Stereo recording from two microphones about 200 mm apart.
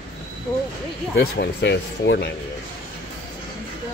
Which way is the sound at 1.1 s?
55° left (ahead or behind).